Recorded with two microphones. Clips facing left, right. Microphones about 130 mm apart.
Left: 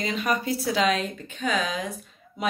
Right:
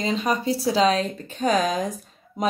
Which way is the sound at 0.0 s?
30° right (ahead or behind).